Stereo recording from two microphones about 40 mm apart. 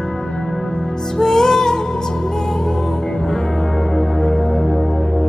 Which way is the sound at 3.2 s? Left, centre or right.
Centre.